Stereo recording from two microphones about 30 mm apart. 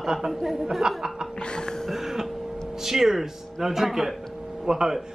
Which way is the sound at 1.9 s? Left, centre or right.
Centre.